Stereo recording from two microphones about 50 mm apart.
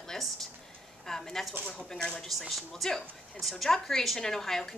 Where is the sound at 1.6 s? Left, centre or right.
Centre.